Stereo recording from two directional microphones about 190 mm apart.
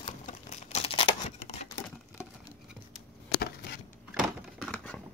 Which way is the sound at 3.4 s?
55° left (ahead or behind).